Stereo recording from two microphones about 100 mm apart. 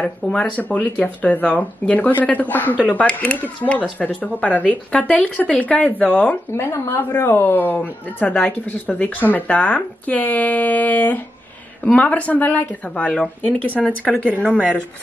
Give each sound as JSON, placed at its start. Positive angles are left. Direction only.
{"t": 0.0, "sound": "speech", "side_deg": 10}
{"t": 6.5, "sound": "speech", "side_deg": 25}
{"t": 13.8, "sound": "speech", "side_deg": -5}